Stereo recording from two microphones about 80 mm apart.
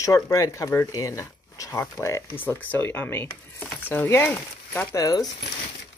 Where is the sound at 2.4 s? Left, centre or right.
Left.